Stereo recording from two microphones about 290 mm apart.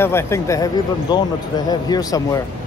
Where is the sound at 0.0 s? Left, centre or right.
Centre.